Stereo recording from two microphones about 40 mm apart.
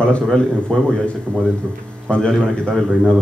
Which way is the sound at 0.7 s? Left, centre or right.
Centre.